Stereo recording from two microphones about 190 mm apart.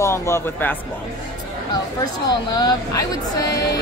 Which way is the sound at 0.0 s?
15° left (ahead or behind).